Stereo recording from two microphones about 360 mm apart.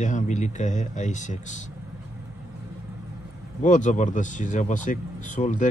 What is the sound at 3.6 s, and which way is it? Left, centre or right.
Speech, centre.